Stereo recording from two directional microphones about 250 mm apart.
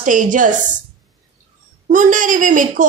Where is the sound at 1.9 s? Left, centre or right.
Right.